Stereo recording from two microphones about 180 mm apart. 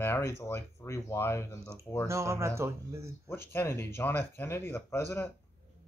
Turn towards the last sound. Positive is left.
turn(degrees=15)  # may be behind; listen again after turning